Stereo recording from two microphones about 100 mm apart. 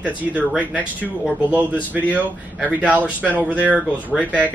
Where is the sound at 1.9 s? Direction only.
15° right (ahead or behind).